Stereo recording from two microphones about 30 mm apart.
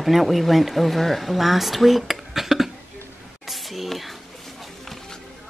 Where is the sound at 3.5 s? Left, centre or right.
Centre.